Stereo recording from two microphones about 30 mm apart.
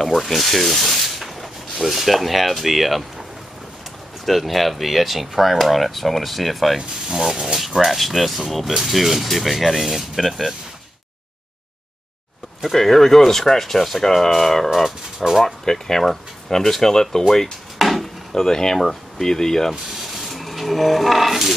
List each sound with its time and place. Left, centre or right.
0.1 s rub: centre
4.3 s speech: centre
6.8 s speech: centre
7.6 s speech: centre
12.7 s speech: centre
14.9 s speech: centre
15.4 s speech: centre
17.7 s wood: centre
18.3 s speech: centre
19.7 s a sound: centre
20.2 s a sound: centre